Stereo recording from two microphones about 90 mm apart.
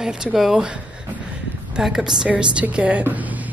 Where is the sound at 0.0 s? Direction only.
10° right (ahead or behind).